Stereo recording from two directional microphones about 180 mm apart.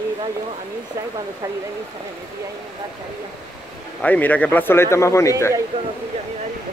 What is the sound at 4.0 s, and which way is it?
Speech, 10° left (ahead or behind).